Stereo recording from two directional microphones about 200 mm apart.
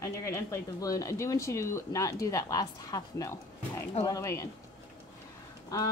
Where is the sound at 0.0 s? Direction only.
15° left (ahead or behind).